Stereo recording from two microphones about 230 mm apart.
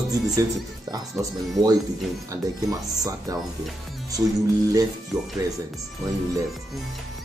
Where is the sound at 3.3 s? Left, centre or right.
Centre.